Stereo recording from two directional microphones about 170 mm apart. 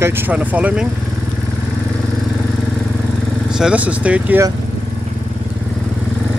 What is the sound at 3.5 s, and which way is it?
Speech, 5° right (ahead or behind).